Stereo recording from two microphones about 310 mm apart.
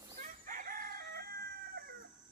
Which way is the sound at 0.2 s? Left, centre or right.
Right.